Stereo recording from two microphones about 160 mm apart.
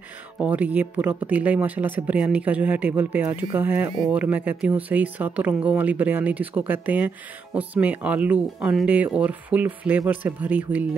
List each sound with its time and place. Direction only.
0.4 s speech: 10° right (ahead or behind)